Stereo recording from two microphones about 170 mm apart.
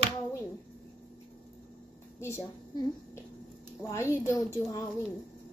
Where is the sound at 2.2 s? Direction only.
15° left (ahead or behind).